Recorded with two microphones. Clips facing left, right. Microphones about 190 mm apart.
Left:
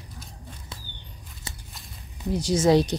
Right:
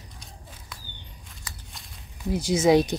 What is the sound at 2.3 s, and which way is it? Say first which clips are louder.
Speech: even; 10° right (ahead or behind).